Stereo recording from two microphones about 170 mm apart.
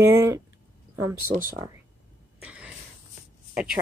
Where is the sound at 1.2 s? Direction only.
55° right (ahead or behind).